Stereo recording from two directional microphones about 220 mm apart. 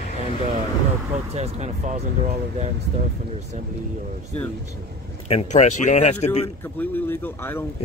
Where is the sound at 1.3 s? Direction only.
30° right (ahead or behind).